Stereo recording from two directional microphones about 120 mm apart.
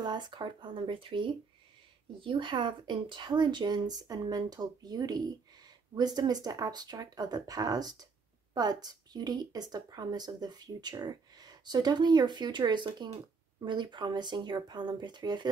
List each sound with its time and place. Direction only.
0.0 s speech: 40° right (ahead or behind)